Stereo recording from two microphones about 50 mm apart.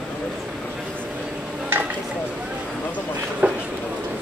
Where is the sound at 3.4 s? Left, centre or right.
Right.